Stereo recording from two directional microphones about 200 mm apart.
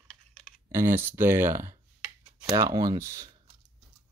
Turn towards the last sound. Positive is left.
turn(degrees=-15)  # may be behind; listen again after turning